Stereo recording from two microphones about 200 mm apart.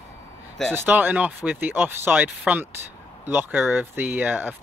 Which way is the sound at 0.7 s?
10° right (ahead or behind).